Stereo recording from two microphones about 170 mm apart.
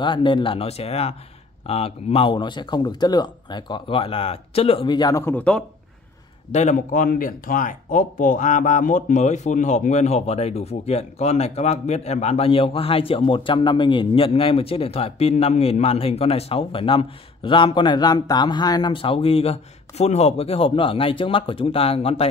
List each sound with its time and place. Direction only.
0.0 s speech: 30° left (ahead or behind); by 5.6 s 10° left (ahead or behind)
6.5 s speech: 45° left (ahead or behind)